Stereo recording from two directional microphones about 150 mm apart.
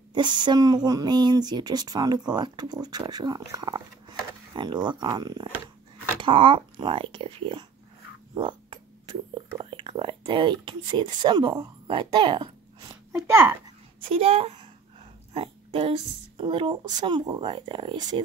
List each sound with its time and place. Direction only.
0.1 s speech: 30° right (ahead or behind)
13.3 s a child's voice: 15° right (ahead or behind)
14.1 s speech: 40° right (ahead or behind)
15.3 s a sound: 40° right (ahead or behind)
16.3 s speech: 35° right (ahead or behind)